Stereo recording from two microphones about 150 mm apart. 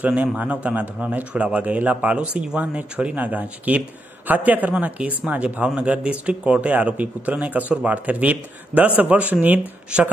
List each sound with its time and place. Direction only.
0.0 s speech: 10° right (ahead or behind)